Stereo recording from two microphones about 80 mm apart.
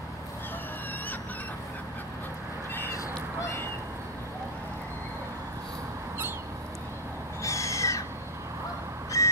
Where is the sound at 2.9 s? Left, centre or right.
Left.